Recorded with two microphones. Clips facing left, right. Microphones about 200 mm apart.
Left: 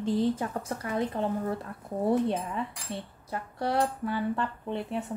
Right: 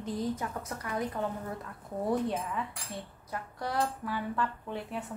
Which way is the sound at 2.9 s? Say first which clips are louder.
Left 4 dB; 30° left (ahead or behind).